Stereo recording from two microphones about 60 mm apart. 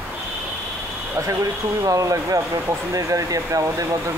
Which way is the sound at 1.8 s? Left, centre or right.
Right.